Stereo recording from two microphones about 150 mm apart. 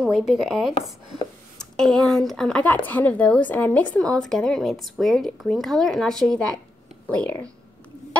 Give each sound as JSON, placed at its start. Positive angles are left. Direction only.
{"t": 0.0, "sound": "speech", "side_deg": -5}